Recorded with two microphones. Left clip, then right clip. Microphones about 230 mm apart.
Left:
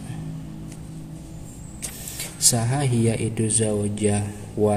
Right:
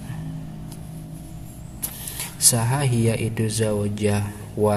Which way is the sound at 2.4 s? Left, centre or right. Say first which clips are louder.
Even; centre.